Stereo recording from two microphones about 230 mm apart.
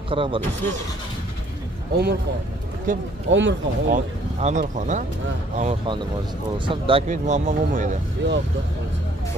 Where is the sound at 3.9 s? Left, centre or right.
Right.